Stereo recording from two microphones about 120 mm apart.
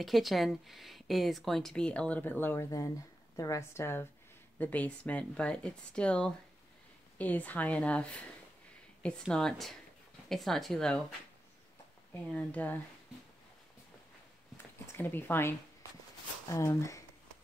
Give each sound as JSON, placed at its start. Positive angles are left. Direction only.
{"t": 0.0, "sound": "a woman's voice", "side_deg": 0}
{"t": 12.3, "sound": "speech", "side_deg": 15}
{"t": 15.0, "sound": "a woman's voice", "side_deg": 15}